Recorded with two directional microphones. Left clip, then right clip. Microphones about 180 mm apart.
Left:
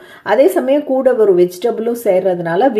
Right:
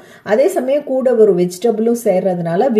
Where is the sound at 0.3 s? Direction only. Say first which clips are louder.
Left 2 dB; centre (ahead or behind).